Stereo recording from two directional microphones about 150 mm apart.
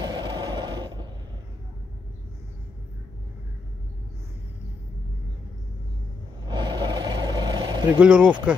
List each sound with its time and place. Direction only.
0.0 s mechanisms: 30° right (ahead or behind)
6.4 s vehicle: 30° right (ahead or behind)
8.0 s speech: 10° right (ahead or behind)